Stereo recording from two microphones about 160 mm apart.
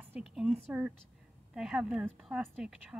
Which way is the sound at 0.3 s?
Centre (ahead or behind).